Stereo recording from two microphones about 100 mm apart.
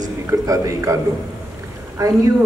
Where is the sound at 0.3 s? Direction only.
30° right (ahead or behind).